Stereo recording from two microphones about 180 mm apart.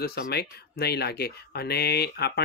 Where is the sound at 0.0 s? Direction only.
60° left (ahead or behind).